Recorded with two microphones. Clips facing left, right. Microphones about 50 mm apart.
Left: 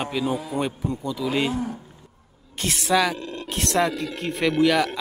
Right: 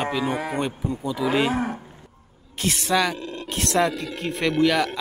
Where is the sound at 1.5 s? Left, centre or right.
Right.